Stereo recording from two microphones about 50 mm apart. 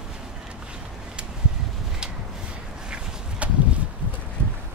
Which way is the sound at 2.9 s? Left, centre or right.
Right.